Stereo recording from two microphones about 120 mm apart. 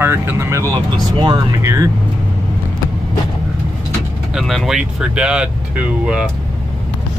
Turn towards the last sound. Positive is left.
turn(degrees=-10)  # may be behind; listen again after turning